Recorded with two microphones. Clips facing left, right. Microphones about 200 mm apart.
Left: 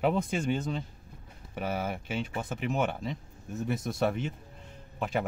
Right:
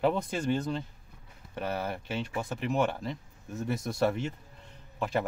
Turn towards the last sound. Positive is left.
turn(degrees=0)  # may be behind; listen again after turning